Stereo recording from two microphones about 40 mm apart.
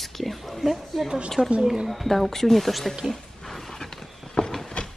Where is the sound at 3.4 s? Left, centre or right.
Centre.